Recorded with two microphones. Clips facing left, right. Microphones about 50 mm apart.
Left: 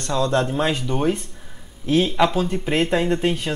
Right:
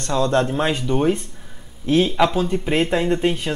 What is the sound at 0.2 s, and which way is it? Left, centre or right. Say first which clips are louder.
Speech: right 2 dB; right.